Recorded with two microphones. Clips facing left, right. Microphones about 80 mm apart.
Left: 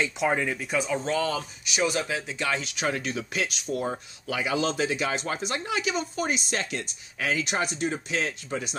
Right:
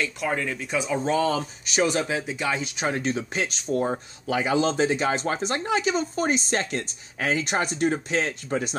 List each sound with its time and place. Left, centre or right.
0.0 s speech: centre
0.6 s speech: centre
0.8 s speech: centre
1.7 s speech: right
2.0 s speech: right